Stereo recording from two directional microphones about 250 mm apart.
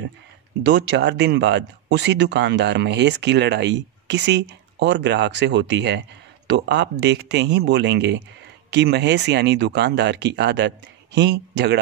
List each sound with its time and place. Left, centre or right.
0.7 s speech: right